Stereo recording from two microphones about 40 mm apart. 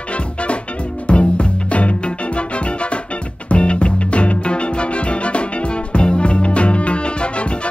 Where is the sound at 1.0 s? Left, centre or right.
Left.